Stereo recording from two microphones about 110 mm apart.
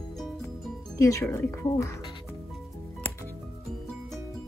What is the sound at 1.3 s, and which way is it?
Speech, 25° left (ahead or behind).